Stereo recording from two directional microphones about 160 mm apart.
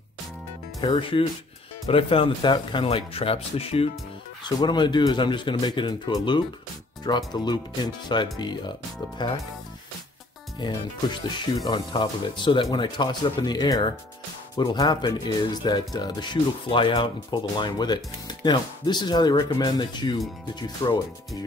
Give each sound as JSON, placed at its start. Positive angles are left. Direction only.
{"t": 0.7, "sound": "speech", "side_deg": 35}
{"t": 4.6, "sound": "speech", "side_deg": 30}
{"t": 10.6, "sound": "speech", "side_deg": 25}